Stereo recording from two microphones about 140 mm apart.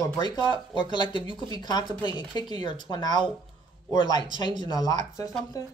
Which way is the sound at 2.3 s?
30° left (ahead or behind).